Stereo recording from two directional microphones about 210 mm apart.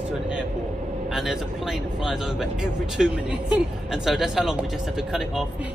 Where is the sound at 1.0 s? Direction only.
Centre (ahead or behind).